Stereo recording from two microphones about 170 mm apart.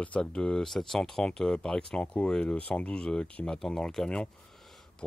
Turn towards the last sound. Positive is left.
turn(degrees=0)  # may be behind; listen again after turning